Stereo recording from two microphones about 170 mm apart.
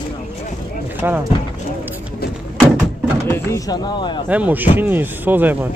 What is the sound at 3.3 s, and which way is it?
Speech, 20° left (ahead or behind).